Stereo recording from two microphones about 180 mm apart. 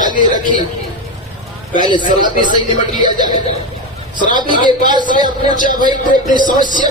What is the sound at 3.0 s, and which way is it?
A man's voice, 25° right (ahead or behind).